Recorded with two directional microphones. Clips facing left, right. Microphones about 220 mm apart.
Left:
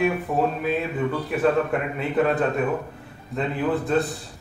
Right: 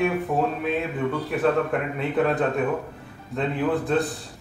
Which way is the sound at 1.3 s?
Centre (ahead or behind).